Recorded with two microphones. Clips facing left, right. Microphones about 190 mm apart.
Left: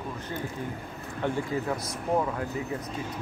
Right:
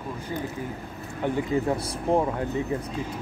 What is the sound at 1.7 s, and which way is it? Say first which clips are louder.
Speech: right 4 dB; 30° right (ahead or behind).